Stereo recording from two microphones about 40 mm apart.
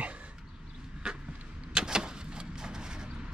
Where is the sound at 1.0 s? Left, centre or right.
Centre.